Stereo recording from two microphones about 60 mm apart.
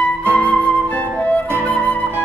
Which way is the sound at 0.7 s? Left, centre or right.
Left.